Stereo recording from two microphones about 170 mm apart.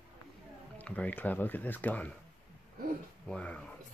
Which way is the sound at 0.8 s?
10° left (ahead or behind).